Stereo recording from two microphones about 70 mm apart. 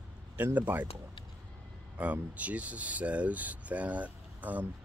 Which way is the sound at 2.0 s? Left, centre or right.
Right.